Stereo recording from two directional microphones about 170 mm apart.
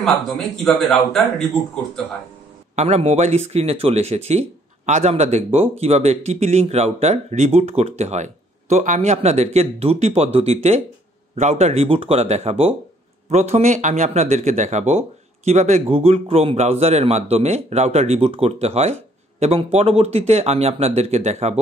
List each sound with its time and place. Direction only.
0.0 s a man's voice: centre (ahead or behind)
2.7 s speech: 40° right (ahead or behind)